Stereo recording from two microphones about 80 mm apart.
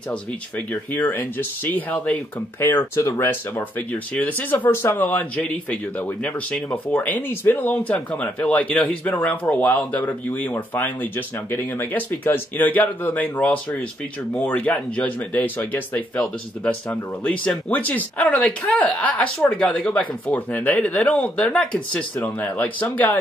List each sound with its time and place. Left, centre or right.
0.1 s speech: left
2.6 s speech: left
3.2 s speech: left